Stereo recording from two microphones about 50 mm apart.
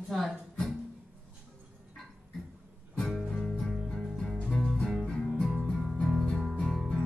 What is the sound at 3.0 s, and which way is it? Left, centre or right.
Music, centre.